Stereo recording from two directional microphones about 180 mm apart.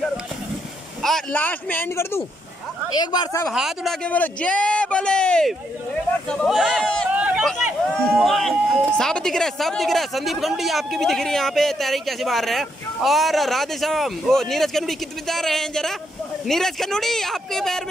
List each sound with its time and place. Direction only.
1.0 s speech: 5° left (ahead or behind); by 3.4 s 25° left (ahead or behind)
3.4 s speech: centre (ahead or behind)
7.1 s a sound: 10° right (ahead or behind)
8.2 s speech: centre (ahead or behind)